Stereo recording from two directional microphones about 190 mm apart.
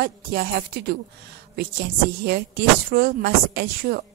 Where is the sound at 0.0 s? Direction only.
55° right (ahead or behind).